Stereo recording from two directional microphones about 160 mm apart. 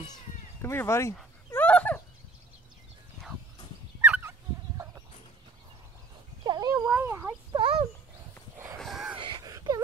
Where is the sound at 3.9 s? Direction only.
10° right (ahead or behind).